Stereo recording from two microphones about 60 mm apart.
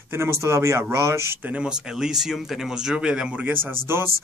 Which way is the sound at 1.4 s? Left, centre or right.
Right.